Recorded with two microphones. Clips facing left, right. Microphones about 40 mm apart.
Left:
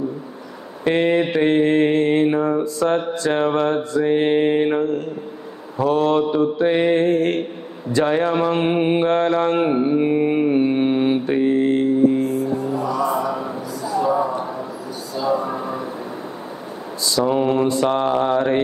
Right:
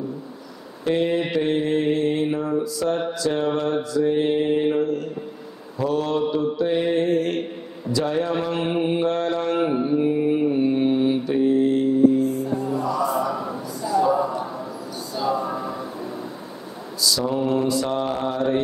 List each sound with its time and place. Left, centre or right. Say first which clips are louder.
0.8 s mantra: left 4 dB; left
12.7 s a sound: left 1 dB; left
17.0 s mantra: left 4 dB; left